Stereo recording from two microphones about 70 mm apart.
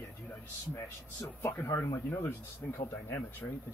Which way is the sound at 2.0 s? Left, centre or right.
Left.